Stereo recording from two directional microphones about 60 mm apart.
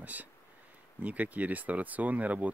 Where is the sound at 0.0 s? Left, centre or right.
Right.